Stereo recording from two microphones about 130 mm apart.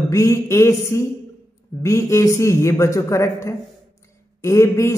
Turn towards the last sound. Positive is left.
turn(degrees=20)  # may be behind; listen again after turning